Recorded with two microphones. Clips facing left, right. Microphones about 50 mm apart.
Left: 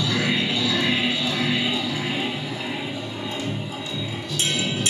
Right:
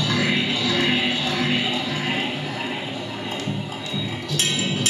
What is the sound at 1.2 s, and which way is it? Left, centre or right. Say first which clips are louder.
Music: right 1 dB; right.